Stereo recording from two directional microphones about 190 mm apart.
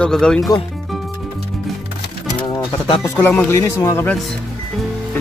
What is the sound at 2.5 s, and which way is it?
Music, 25° left (ahead or behind).